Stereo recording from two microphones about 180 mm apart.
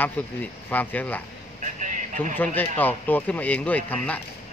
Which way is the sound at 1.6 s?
45° right (ahead or behind).